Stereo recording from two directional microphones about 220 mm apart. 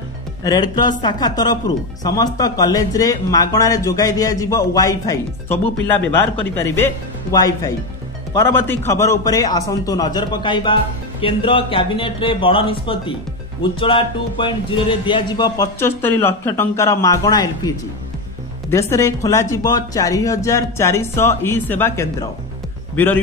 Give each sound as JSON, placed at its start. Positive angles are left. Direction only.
{"t": 0.4, "sound": "a man's voice", "side_deg": 15}